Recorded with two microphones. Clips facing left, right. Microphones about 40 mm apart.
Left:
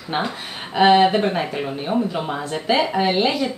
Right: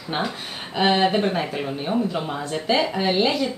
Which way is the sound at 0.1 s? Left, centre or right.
Centre.